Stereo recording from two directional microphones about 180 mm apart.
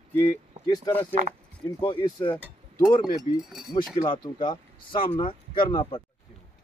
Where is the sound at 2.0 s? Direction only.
25° left (ahead or behind).